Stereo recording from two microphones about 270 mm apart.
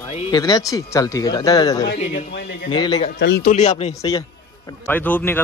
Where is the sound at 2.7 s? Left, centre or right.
Centre.